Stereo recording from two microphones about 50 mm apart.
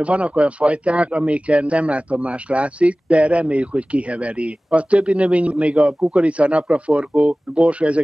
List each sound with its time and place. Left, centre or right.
0.0 s speech: right